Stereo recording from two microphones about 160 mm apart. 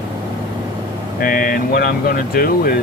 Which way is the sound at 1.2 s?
60° left (ahead or behind).